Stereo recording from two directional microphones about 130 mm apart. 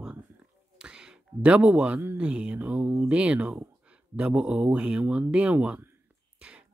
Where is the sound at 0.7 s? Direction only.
5° right (ahead or behind).